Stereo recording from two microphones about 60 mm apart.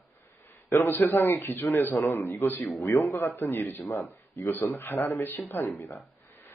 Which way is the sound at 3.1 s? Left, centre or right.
Left.